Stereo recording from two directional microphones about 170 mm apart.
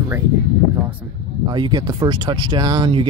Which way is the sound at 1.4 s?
25° right (ahead or behind).